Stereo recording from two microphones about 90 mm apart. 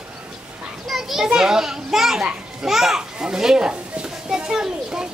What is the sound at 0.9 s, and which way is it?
Children playing, 5° right (ahead or behind).